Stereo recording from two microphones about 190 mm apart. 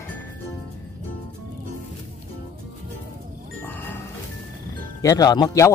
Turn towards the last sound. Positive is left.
turn(degrees=20)  # may be behind; listen again after turning